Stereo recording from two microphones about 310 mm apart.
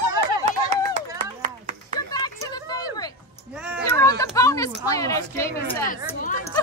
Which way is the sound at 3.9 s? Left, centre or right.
Centre.